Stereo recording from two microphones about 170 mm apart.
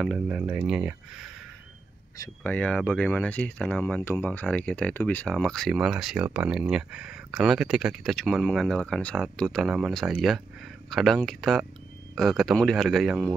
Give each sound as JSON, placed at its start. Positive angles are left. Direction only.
{"t": 0.0, "sound": "speech", "side_deg": 0}
{"t": 2.4, "sound": "speech", "side_deg": 10}